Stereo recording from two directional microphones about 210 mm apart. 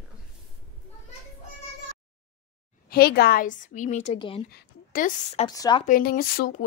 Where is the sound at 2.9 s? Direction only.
45° left (ahead or behind).